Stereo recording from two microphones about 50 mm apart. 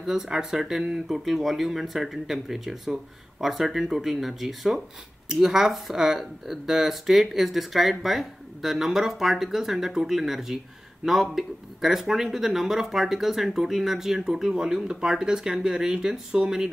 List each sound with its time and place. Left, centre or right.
0.0 s speech: centre